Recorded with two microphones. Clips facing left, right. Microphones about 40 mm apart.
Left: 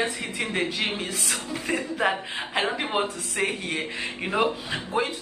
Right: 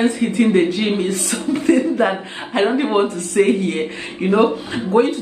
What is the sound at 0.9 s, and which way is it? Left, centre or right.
Speech, centre.